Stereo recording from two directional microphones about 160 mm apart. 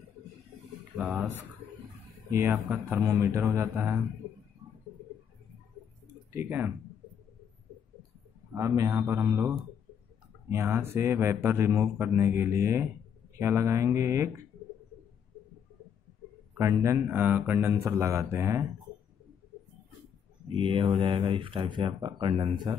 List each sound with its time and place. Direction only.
1.0 s speech: 10° right (ahead or behind)
6.3 s speech: 15° right (ahead or behind)
8.5 s a man's voice: 20° right (ahead or behind)
16.5 s speech: 20° right (ahead or behind)
20.4 s speech: 35° right (ahead or behind)